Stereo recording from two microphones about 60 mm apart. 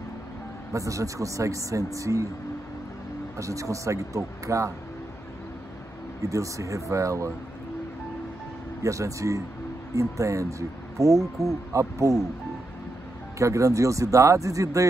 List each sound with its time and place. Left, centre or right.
0.7 s speech: right
3.3 s speech: right
6.2 s speech: right
8.8 s speech: right
13.4 s speech: right